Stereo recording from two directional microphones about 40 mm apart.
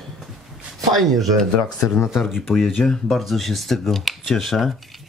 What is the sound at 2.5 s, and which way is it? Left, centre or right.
Speech, centre.